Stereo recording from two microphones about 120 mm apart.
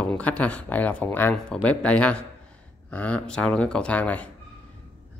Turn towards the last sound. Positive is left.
turn(degrees=10)  # may be behind; listen again after turning